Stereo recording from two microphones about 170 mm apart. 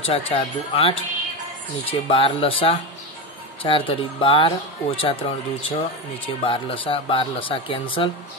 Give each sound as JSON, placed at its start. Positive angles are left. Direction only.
{"t": 0.0, "sound": "speech", "side_deg": 35}